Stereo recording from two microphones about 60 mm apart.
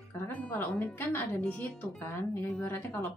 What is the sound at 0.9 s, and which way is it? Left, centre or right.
Speech, left.